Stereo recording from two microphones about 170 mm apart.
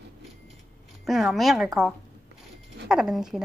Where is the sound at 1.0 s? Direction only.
Centre (ahead or behind).